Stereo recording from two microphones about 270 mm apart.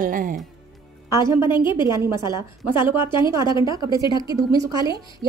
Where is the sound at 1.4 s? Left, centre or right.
Centre.